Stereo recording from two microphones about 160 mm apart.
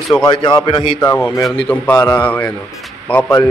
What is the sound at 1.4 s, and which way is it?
A man's voice, 5° left (ahead or behind).